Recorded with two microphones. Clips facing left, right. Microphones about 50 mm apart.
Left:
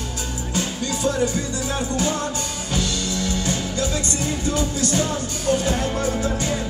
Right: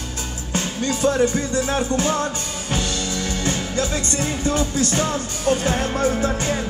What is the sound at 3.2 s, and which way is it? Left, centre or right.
Music, right.